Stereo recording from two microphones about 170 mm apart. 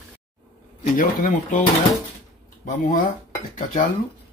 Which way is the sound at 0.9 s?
50° left (ahead or behind).